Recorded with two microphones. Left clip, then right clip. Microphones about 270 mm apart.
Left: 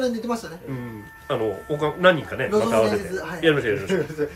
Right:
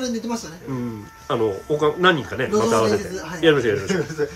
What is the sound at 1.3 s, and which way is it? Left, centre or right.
Speech, centre.